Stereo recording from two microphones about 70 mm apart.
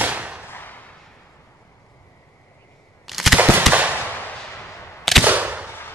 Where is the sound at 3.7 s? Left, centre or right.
Right.